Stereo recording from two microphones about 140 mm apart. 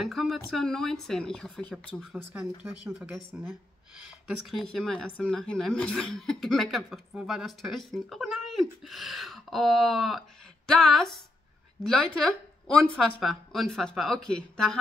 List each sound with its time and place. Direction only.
0.0 s speech: centre (ahead or behind)
2.6 s speech: 5° right (ahead or behind)
4.5 s a woman's voice: centre (ahead or behind)